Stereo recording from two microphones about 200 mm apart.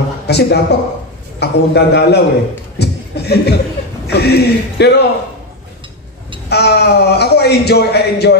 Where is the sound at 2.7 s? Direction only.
55° left (ahead or behind).